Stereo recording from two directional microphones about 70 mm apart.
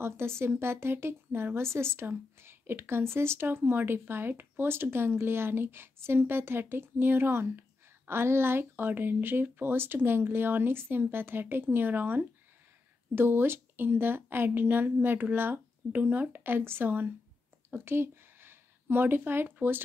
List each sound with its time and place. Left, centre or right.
0.4 s a woman's voice: right